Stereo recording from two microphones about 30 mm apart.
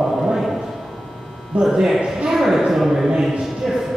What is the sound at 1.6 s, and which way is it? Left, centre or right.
Speech, centre.